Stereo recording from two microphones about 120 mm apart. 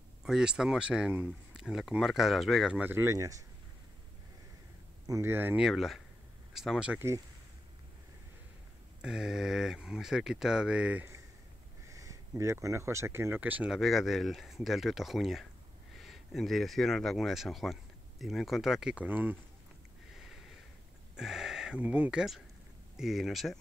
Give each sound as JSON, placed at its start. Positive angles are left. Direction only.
{"t": 0.2, "sound": "speech", "side_deg": -5}
{"t": 2.8, "sound": "speech", "side_deg": -20}
{"t": 5.0, "sound": "speech", "side_deg": -25}
{"t": 5.6, "sound": "speech", "side_deg": 0}
{"t": 9.0, "sound": "speech", "side_deg": -5}
{"t": 11.9, "sound": "speech", "side_deg": -25}
{"t": 13.7, "sound": "speech", "side_deg": 0}
{"t": 21.2, "sound": "speech", "side_deg": -5}